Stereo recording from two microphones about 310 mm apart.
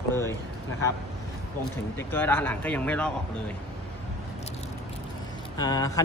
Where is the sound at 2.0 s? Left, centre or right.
Centre.